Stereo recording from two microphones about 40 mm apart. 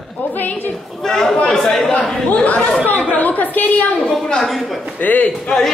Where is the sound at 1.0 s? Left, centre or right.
Centre.